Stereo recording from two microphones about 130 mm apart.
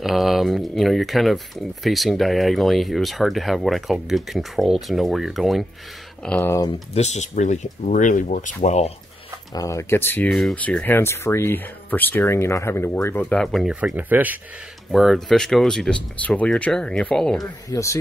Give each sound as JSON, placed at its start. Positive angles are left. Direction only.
{"t": 0.0, "sound": "speech", "side_deg": 0}
{"t": 6.2, "sound": "speech", "side_deg": 10}
{"t": 6.9, "sound": "speech", "side_deg": 60}
{"t": 8.6, "sound": "speech", "side_deg": 55}
{"t": 9.5, "sound": "speech", "side_deg": 25}
{"t": 10.3, "sound": "speech", "side_deg": 0}
{"t": 10.6, "sound": "speech", "side_deg": 10}
{"t": 13.7, "sound": "speech", "side_deg": -10}
{"t": 14.9, "sound": "speech", "side_deg": 0}
{"t": 17.6, "sound": "speech", "side_deg": 25}